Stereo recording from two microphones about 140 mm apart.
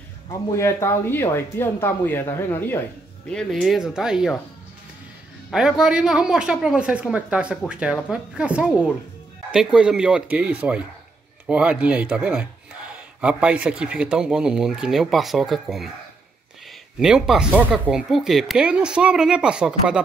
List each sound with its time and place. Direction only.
0.6 s speech: 20° left (ahead or behind)
3.3 s speech: 5° left (ahead or behind)
5.5 s speech: 5° right (ahead or behind)
17.0 s speech: 5° right (ahead or behind)